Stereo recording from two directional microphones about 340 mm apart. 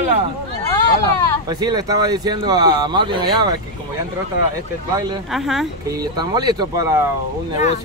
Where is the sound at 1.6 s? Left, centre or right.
Centre.